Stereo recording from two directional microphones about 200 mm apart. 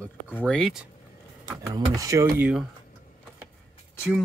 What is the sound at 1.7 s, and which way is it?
Speech, 15° right (ahead or behind).